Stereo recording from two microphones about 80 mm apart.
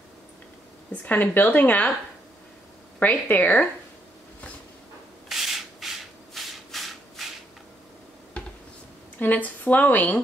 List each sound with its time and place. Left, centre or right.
1.0 s speech: left
3.0 s speech: left
5.3 s rub: centre
9.2 s speech: left